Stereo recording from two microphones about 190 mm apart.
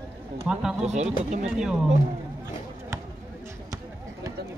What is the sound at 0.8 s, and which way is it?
Speech, 35° right (ahead or behind).